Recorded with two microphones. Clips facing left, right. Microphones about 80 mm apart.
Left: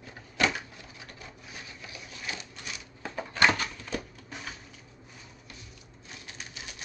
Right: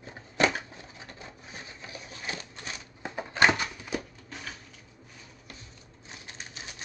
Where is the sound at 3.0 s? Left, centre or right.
Centre.